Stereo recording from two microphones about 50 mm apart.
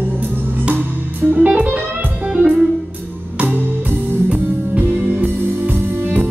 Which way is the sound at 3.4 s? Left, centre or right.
Right.